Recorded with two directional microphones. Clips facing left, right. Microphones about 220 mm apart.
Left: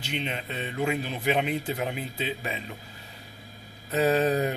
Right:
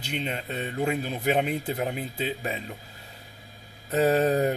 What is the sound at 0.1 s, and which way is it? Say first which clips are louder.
Speech: right 1 dB; 40° right (ahead or behind).